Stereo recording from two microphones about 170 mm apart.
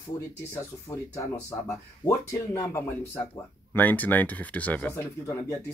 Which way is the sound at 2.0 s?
15° left (ahead or behind).